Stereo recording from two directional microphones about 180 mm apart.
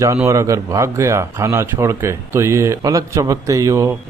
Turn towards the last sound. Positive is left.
turn(degrees=-20)  # may be behind; listen again after turning